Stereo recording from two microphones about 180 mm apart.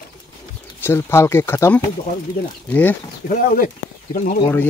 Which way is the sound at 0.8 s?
15° left (ahead or behind).